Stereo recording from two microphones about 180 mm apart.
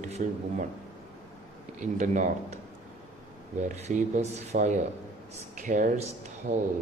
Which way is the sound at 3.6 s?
40° right (ahead or behind).